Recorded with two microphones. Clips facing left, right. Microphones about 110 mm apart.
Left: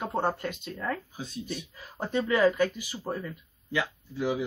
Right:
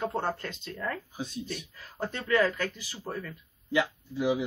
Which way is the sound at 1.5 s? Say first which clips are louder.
Left 2 dB; 15° left (ahead or behind).